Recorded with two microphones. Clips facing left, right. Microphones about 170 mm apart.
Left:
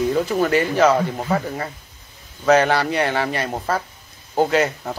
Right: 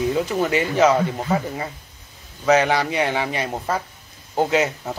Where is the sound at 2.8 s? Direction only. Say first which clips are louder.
Left 1 dB; 5° right (ahead or behind).